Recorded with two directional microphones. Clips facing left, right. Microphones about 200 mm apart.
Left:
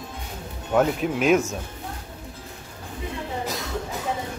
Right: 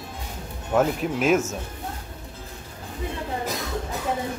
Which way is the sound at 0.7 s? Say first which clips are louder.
Left 1 dB; centre (ahead or behind).